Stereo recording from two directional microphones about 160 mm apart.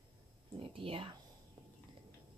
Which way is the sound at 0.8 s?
35° right (ahead or behind).